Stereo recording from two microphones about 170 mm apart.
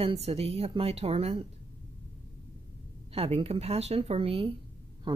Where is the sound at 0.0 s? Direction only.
35° right (ahead or behind).